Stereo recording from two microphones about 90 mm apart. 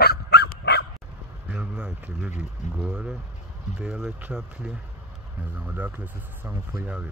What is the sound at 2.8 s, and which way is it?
Speech, 10° right (ahead or behind).